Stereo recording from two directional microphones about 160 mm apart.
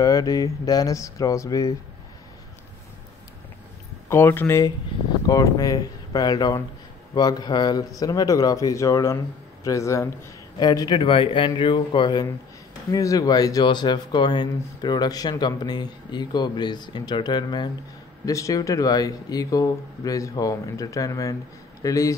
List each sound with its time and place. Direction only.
0.0 s speech: 20° left (ahead or behind)
4.1 s speech: 15° left (ahead or behind)